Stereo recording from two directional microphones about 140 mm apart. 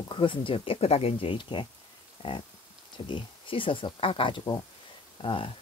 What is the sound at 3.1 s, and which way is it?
Speech, 40° left (ahead or behind).